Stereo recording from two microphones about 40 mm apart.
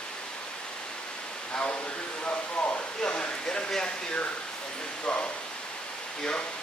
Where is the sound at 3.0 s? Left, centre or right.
Left.